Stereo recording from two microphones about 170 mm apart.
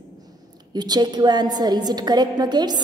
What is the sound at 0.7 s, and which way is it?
A woman's voice, 25° right (ahead or behind).